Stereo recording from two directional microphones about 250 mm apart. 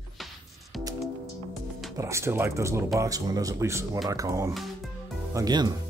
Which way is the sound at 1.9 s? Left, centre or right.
Centre.